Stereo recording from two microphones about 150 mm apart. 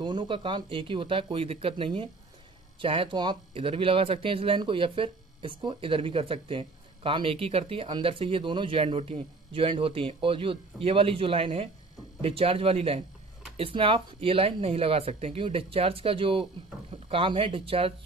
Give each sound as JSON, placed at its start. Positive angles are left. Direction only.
{"t": 0.0, "sound": "speech", "side_deg": -30}